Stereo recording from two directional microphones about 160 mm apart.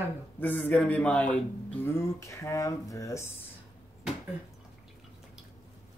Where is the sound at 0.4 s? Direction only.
10° left (ahead or behind).